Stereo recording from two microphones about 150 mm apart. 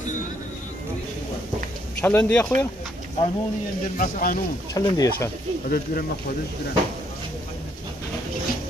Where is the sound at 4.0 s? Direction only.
70° left (ahead or behind).